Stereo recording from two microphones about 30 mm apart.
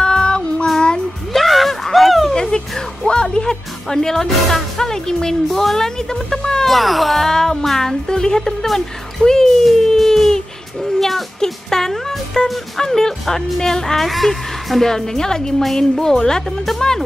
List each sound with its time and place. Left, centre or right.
0.0 s child singing: left
0.7 s music: left
1.3 s a sound: centre
2.3 s a sound: left
3.1 s speech: left
6.7 s speech: centre
7.2 s speech: centre
8.1 s a woman's voice: left
9.9 s a sound: centre
11.3 s a sound: centre
11.9 s music: centre
12.7 s speech: centre
13.9 s a woman's voice: centre; by 16.4 s left
16.4 s speech: centre